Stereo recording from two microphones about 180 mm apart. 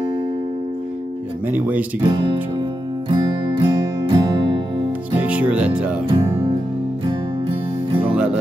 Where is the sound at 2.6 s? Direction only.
25° right (ahead or behind).